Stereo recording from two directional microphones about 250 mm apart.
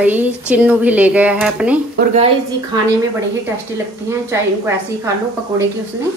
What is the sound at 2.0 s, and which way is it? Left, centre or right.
Speech, right.